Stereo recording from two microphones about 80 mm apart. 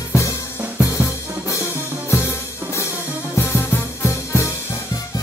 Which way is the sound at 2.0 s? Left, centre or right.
Left.